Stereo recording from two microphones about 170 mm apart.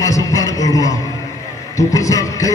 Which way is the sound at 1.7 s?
20° left (ahead or behind).